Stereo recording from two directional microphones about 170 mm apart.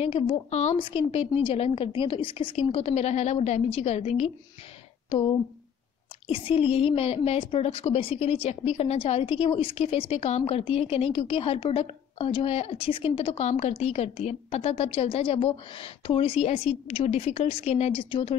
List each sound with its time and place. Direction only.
0.0 s a woman's voice: 35° left (ahead or behind)
0.7 s a woman's voice: 30° left (ahead or behind)
6.2 s a woman's voice: 35° left (ahead or behind)